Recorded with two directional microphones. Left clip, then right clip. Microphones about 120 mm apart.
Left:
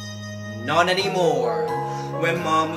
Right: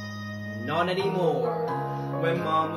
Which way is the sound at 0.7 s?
20° right (ahead or behind).